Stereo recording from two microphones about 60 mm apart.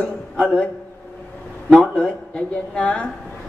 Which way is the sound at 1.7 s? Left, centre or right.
Centre.